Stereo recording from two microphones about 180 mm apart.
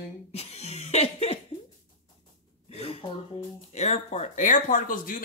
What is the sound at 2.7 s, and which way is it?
Speech, 35° left (ahead or behind).